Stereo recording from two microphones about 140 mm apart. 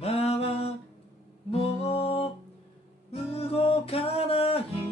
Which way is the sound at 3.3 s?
45° left (ahead or behind).